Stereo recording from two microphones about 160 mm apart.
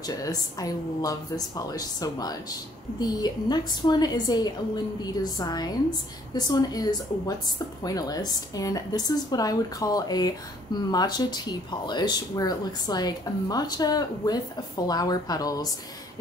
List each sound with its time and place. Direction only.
0.0 s speech: 25° left (ahead or behind)